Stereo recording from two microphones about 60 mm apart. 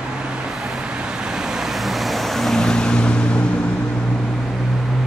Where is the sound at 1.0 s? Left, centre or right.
Centre.